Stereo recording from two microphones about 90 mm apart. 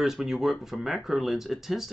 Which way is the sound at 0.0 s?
5° right (ahead or behind).